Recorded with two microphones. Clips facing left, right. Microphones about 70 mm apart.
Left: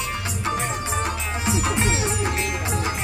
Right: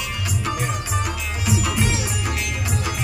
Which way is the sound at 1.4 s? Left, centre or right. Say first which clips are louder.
Right 1 dB; left.